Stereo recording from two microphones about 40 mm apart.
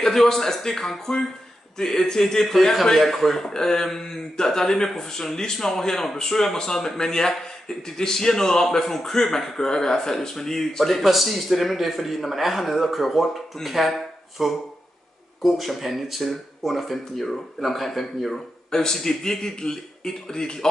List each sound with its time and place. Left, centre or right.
0.0 s a man's voice: centre
18.7 s a man's voice: centre